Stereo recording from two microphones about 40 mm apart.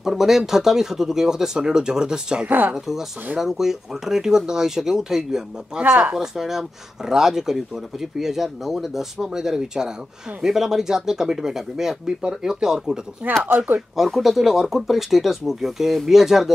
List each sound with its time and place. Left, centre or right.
0.0 s speech: centre
2.4 s speech: right
2.7 s speech: centre
5.8 s speech: right
6.1 s speech: centre
13.2 s speech: right
13.9 s speech: centre